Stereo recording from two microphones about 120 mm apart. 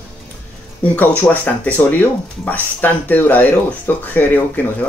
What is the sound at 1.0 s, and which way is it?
Speech, 15° left (ahead or behind).